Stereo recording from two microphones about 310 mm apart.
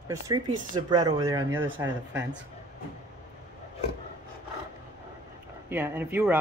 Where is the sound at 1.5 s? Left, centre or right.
Right.